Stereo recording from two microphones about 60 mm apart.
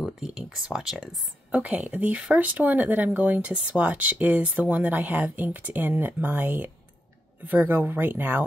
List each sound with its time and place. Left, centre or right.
0.0 s speech: centre
1.5 s speech: right